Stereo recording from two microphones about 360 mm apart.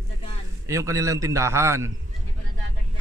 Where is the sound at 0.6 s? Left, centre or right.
Centre.